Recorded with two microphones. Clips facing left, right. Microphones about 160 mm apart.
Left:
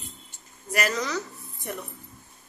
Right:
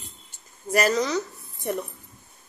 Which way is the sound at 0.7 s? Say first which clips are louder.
Right 5 dB; 35° right (ahead or behind).